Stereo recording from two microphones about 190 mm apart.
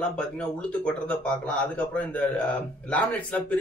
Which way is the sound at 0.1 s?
5° left (ahead or behind).